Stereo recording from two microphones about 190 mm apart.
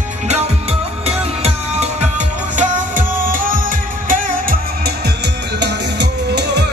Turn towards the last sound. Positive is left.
turn(degrees=-65)  # may be behind; listen again after turning